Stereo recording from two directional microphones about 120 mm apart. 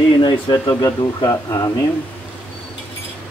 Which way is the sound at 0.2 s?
35° left (ahead or behind).